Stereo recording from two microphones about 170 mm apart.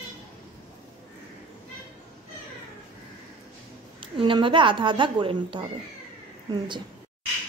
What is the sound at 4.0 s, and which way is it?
A woman's voice, 30° right (ahead or behind).